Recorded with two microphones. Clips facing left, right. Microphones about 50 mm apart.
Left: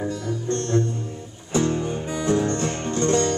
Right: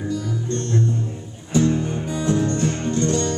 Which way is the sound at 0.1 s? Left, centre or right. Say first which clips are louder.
Right 1 dB; left.